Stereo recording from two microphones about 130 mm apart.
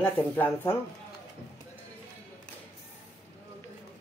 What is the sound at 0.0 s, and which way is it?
Speech, 15° left (ahead or behind).